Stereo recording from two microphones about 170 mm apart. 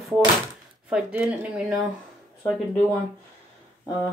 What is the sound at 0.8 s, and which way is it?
Speech, 5° right (ahead or behind).